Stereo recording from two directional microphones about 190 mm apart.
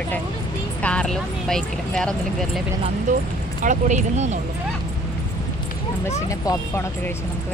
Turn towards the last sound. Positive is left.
turn(degrees=15)  # may be behind; listen again after turning